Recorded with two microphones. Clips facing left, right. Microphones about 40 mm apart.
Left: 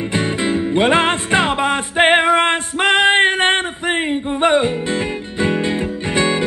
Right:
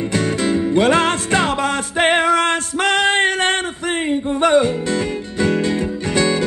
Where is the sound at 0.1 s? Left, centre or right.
Left.